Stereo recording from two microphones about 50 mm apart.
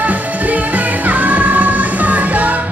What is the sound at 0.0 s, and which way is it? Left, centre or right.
Music, right.